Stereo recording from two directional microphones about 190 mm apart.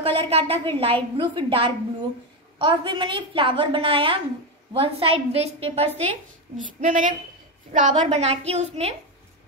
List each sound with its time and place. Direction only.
0.0 s a woman's voice: 30° right (ahead or behind)
6.5 s a woman's voice: 40° right (ahead or behind)